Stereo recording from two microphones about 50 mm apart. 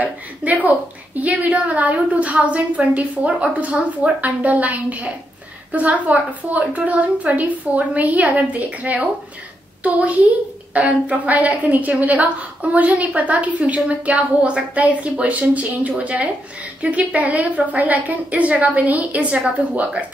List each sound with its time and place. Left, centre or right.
0.0 s a woman's voice: right